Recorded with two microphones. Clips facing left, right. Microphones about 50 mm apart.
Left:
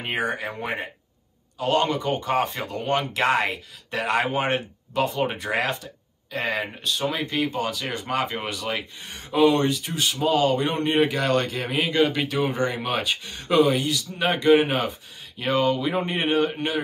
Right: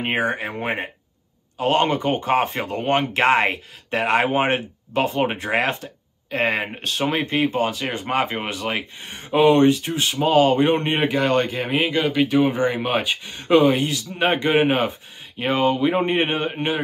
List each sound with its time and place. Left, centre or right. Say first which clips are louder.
0.0 s speech: right 4 dB; right
11.9 s speech: left 2 dB; centre
12.3 s speech: right 5 dB; right